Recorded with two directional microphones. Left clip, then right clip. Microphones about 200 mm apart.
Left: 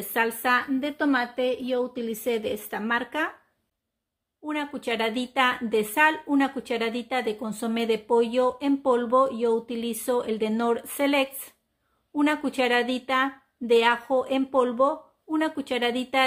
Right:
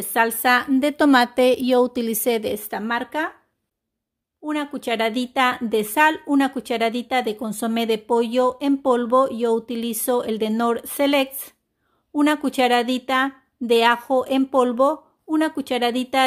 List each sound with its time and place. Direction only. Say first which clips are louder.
0.1 s a woman's voice: right 6 dB; 35° right (ahead or behind)
4.5 s a woman's voice: right 4 dB; 35° right (ahead or behind)